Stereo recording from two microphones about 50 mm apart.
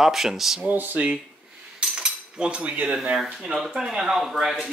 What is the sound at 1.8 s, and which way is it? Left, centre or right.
Cutlery, centre.